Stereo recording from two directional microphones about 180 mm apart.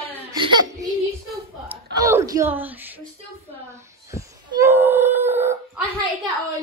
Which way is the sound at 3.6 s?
15° right (ahead or behind).